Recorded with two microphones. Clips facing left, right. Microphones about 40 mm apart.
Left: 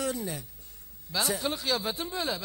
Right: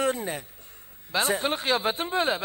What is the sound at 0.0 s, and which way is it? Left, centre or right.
Speech, right.